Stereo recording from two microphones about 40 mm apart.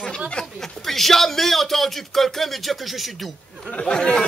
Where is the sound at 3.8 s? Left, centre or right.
Left.